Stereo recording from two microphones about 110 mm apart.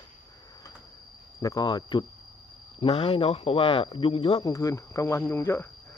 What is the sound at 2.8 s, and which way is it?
Speech, 60° left (ahead or behind).